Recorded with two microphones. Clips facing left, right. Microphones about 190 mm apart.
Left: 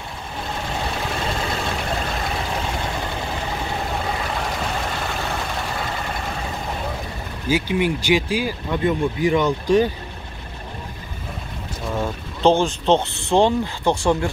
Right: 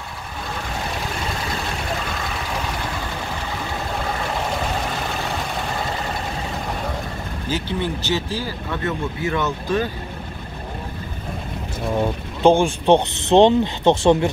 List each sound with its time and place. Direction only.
7.4 s speech: 10° left (ahead or behind)
11.9 s a sound: 15° right (ahead or behind)
12.8 s speech: 15° right (ahead or behind)